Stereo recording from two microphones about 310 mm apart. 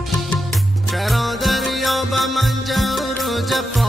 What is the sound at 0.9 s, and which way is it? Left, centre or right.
Music, centre.